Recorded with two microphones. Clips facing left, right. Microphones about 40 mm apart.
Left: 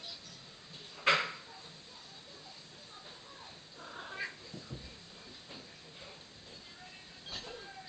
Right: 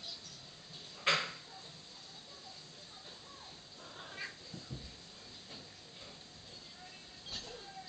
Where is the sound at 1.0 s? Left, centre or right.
Centre.